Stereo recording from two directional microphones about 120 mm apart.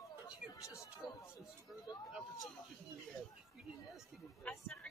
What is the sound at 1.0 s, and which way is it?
Speech, 35° left (ahead or behind).